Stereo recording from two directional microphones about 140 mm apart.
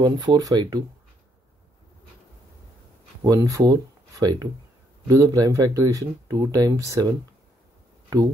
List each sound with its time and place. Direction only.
0.0 s speech: 30° right (ahead or behind)
3.3 s speech: 25° right (ahead or behind)